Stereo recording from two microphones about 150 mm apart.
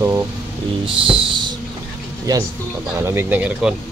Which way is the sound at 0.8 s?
35° right (ahead or behind).